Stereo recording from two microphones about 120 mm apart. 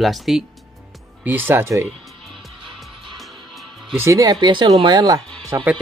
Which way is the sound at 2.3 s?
Centre (ahead or behind).